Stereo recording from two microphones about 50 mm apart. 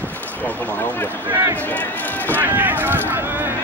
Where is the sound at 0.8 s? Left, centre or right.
Left.